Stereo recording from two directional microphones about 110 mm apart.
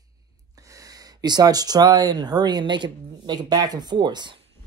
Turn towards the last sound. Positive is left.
turn(degrees=-45)  # may be behind; listen again after turning